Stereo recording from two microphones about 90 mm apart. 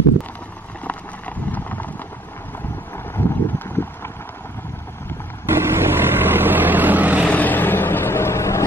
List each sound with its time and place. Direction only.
0.8 s a sound: 20° left (ahead or behind)
3.2 s boat: 25° left (ahead or behind)
5.5 s vehicle: 25° right (ahead or behind)
7.2 s vehicle: 20° left (ahead or behind)